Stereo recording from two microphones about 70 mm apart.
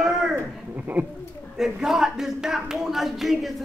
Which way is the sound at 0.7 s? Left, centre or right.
Right.